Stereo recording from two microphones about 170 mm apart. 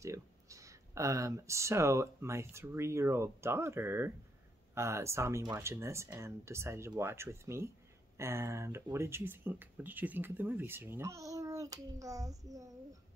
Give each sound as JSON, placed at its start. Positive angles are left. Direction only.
{"t": 0.0, "sound": "speech", "side_deg": -20}